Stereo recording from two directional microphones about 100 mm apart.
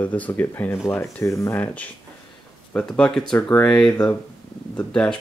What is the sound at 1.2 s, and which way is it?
Speech, 35° left (ahead or behind).